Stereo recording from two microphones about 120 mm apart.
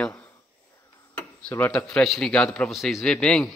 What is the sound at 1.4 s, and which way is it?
Speech, 15° left (ahead or behind).